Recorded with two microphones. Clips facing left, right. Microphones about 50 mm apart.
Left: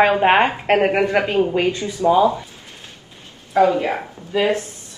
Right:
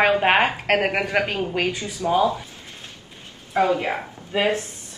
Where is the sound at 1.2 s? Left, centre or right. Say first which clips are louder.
Left 6 dB; left.